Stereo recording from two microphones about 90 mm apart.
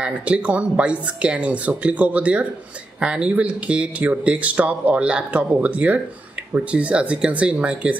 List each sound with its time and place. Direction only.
0.0 s speech: 15° right (ahead or behind)